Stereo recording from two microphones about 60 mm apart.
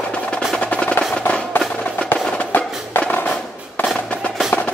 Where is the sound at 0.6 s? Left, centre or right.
Left.